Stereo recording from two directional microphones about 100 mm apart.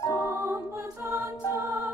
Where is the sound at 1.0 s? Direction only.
20° right (ahead or behind).